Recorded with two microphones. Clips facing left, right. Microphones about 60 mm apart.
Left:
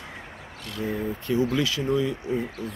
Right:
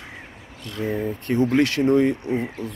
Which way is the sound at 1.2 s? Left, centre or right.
Right.